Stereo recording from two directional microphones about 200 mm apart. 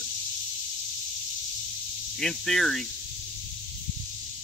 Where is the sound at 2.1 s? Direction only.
Centre (ahead or behind).